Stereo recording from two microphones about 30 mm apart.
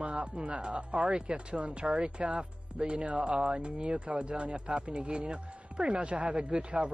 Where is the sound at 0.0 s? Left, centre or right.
Right.